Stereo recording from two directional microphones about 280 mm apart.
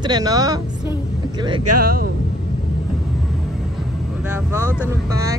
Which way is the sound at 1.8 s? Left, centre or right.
Right.